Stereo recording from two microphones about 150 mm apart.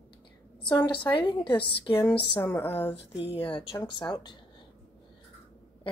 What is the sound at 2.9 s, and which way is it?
Speech, 40° left (ahead or behind).